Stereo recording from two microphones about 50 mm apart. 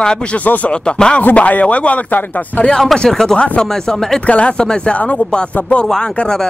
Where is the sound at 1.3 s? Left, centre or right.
Left.